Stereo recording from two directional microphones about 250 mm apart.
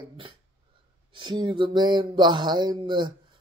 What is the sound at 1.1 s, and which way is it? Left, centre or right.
Speech, centre.